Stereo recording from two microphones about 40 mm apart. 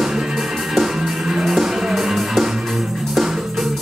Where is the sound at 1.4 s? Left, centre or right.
Centre.